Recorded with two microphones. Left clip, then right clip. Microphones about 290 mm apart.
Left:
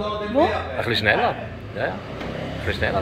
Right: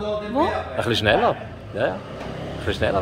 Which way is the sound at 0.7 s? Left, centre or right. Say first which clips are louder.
Right 2 dB; right.